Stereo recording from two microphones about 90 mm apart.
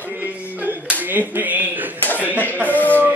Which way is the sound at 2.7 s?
20° left (ahead or behind).